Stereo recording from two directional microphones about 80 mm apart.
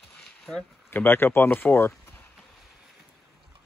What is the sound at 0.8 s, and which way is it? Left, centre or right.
Speech, left.